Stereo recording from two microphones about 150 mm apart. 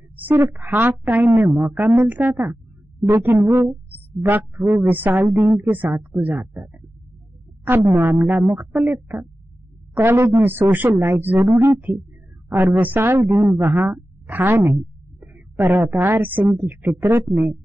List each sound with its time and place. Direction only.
0.1 s a woman's voice: 10° right (ahead or behind)